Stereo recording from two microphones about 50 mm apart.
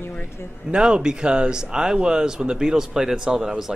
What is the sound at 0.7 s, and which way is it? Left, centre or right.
Speech, centre.